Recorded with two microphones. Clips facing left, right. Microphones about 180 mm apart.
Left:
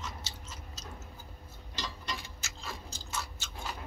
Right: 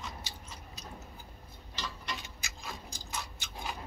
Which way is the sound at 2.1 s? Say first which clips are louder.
Left 1 dB; 20° right (ahead or behind).